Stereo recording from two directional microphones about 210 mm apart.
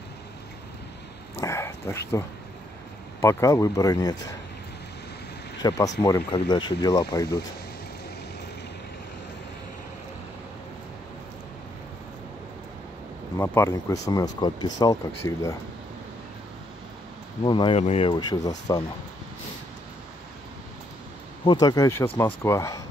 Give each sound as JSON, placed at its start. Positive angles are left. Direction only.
{"t": 1.4, "sound": "a sound", "side_deg": 15}
{"t": 3.2, "sound": "speech", "side_deg": 15}
{"t": 5.6, "sound": "speech", "side_deg": 20}
{"t": 13.4, "sound": "speech", "side_deg": 10}
{"t": 17.4, "sound": "speech", "side_deg": 20}
{"t": 21.5, "sound": "speech", "side_deg": 20}